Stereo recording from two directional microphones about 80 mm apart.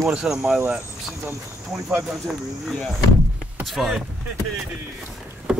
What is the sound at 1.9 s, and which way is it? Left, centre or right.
Speech, right.